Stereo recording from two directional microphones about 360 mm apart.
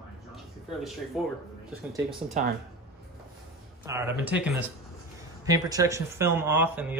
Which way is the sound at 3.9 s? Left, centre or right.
Centre.